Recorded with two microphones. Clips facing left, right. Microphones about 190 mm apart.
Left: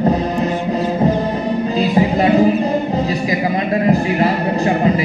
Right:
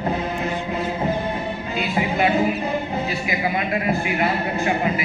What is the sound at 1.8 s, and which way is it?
Music, 35° left (ahead or behind).